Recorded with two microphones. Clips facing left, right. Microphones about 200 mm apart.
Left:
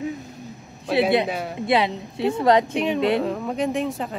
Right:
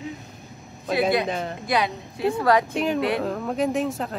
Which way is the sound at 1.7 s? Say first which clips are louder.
Left 4 dB; 25° left (ahead or behind).